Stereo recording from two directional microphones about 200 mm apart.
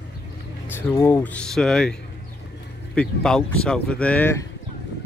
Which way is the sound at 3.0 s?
5° left (ahead or behind).